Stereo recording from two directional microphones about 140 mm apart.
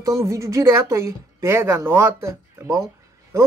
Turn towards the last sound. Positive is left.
turn(degrees=-20)  # may be behind; listen again after turning